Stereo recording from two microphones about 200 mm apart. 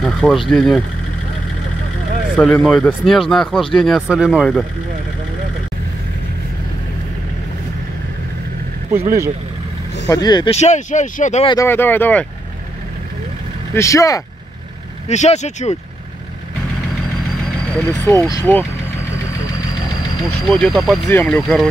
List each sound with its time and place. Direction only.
0.0 s vehicle: centre (ahead or behind)
0.5 s speech: centre (ahead or behind)
2.3 s speech: 5° left (ahead or behind)
8.9 s speech: 15° right (ahead or behind)
10.0 s speech: 20° left (ahead or behind); by 11.4 s 35° left (ahead or behind)
11.4 s speech: 15° left (ahead or behind)
13.7 s speech: 15° left (ahead or behind)
15.0 s speech: 35° left (ahead or behind)
17.7 s speech: 5° left (ahead or behind)
20.2 s speech: centre (ahead or behind)